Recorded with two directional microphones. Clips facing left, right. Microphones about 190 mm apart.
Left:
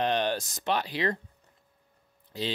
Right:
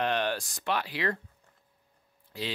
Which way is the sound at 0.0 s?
20° left (ahead or behind).